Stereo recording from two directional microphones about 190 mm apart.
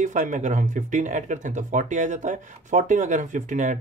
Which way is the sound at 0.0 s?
40° right (ahead or behind).